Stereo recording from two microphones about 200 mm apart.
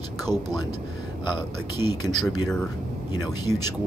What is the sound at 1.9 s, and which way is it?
Speech, 20° left (ahead or behind).